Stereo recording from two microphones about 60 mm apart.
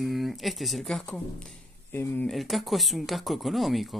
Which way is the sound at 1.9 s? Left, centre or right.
Left.